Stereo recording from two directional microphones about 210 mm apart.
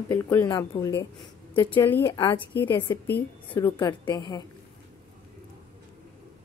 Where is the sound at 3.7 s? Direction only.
20° left (ahead or behind).